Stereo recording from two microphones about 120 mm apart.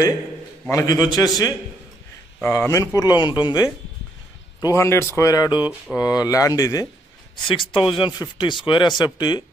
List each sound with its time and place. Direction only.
0.7 s speech: 30° left (ahead or behind)
2.4 s speech: 20° left (ahead or behind); by 3.6 s 40° left (ahead or behind)
4.6 s speech: 30° left (ahead or behind)
7.3 s speech: 45° left (ahead or behind)